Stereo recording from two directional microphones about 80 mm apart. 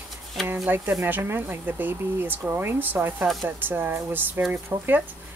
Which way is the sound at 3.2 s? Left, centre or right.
Centre.